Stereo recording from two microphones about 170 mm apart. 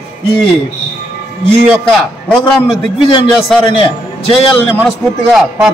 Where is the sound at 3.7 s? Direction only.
30° left (ahead or behind).